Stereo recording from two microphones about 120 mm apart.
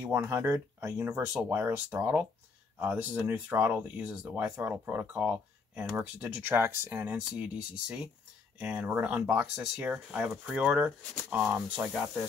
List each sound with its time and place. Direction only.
0.0 s speech: 20° right (ahead or behind)
1.3 s speech: 10° right (ahead or behind)